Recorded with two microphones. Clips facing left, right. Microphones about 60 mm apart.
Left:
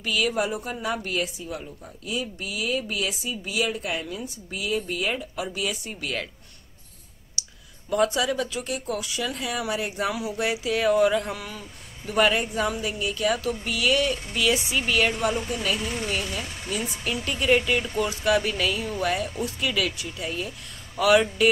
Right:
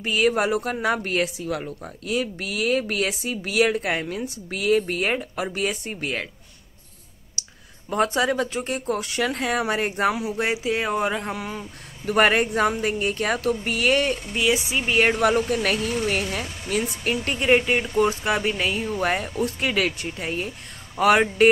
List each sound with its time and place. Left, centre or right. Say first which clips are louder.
0.0 s speech: right 5 dB; right
0.4 s speech: right 4 dB; right
0.8 s speech: right 3 dB; right
1.2 s speech: right 5 dB; right
7.4 s clicking: even; right
7.9 s speech: right 1 dB; right
10.1 s a man's voice: right 2 dB; right
12.1 s speech: right 3 dB; right
14.3 s a man's voice: right 2 dB; right
15.0 s speech: right 6 dB; right